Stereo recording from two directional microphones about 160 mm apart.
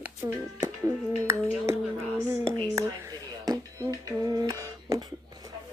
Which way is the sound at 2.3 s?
15° right (ahead or behind).